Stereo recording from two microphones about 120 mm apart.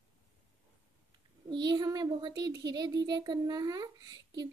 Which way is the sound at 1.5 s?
35° right (ahead or behind).